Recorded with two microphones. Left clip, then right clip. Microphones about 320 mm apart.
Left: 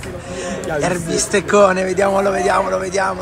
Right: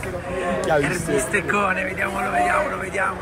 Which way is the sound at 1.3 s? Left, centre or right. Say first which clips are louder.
Left 11 dB; centre.